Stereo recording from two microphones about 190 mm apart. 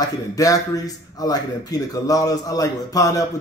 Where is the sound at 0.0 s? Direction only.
20° left (ahead or behind).